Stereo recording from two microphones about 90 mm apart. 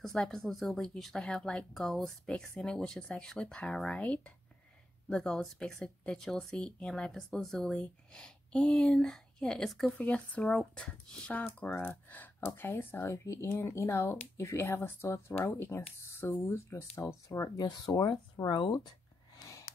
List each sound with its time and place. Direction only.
0.0 s speech: 5° left (ahead or behind)
9.9 s speech: 15° left (ahead or behind); by 17.5 s 35° left (ahead or behind)
17.5 s speech: 50° left (ahead or behind)
18.5 s speech: 60° left (ahead or behind)
19.3 s a sound: 45° left (ahead or behind)